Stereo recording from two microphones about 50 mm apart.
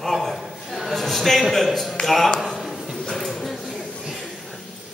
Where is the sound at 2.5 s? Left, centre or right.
Centre.